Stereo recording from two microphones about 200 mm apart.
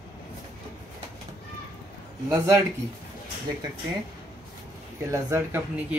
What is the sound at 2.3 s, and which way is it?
Speech, 15° right (ahead or behind).